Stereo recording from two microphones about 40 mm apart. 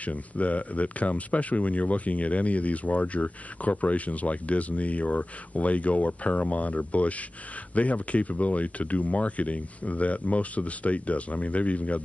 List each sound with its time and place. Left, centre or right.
0.0 s speech: left